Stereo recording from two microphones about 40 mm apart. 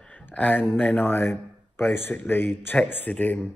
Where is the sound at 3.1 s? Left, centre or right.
Left.